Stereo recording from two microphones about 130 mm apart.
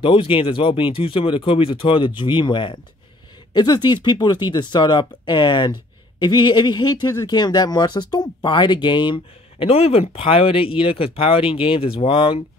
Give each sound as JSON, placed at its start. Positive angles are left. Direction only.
{"t": 0.0, "sound": "speech", "side_deg": 40}